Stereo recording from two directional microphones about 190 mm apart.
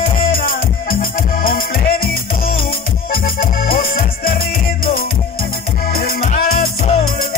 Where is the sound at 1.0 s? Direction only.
50° left (ahead or behind).